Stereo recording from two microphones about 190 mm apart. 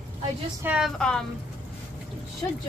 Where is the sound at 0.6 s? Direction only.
Centre (ahead or behind).